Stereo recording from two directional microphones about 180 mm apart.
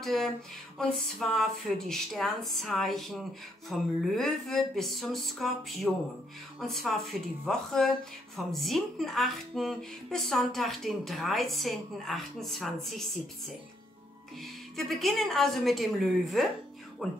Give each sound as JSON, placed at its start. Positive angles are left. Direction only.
{"t": 0.0, "sound": "a sound", "side_deg": 0}
{"t": 0.7, "sound": "speech", "side_deg": 5}
{"t": 14.4, "sound": "speech", "side_deg": 0}